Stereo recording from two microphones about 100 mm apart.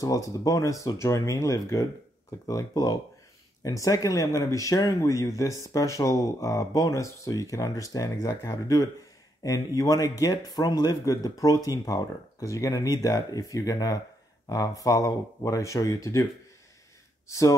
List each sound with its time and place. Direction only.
0.0 s speech: 35° left (ahead or behind)
17.3 s speech: 30° left (ahead or behind)